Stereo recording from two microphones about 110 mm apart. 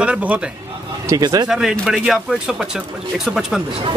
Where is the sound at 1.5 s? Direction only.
5° right (ahead or behind).